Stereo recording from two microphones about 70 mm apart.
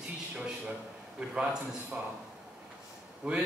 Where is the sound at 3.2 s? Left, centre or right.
Centre.